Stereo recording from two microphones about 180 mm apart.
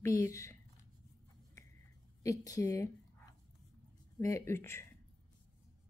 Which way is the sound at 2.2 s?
20° left (ahead or behind).